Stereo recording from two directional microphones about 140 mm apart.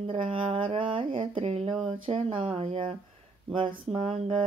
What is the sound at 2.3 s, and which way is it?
Speech, 40° right (ahead or behind).